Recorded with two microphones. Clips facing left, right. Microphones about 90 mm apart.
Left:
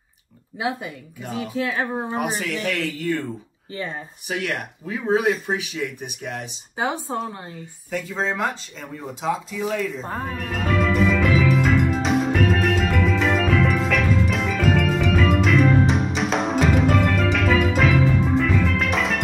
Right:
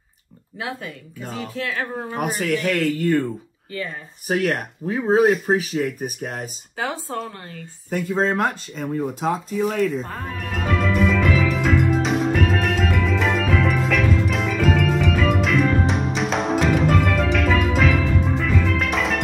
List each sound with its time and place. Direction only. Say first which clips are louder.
0.6 s speech: left 4 dB; 20° left (ahead or behind)
2.1 s speech: right 6 dB; 45° right (ahead or behind)
3.7 s speech: even; 25° left (ahead or behind)
4.3 s speech: right 5 dB; 40° right (ahead or behind)
6.8 s speech: left 2 dB; 20° left (ahead or behind)
7.9 s speech: right 4 dB; 45° right (ahead or behind)
10.1 s music: left 1 dB; centre (ahead or behind)